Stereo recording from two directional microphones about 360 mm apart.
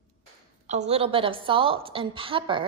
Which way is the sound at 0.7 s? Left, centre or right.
Centre.